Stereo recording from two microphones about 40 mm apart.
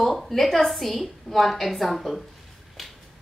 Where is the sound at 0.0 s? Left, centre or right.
Centre.